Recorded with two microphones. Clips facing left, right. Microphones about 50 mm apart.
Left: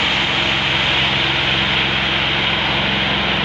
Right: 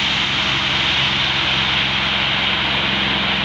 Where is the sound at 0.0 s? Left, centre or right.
Centre.